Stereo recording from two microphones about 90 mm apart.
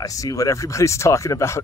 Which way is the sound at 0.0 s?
40° left (ahead or behind).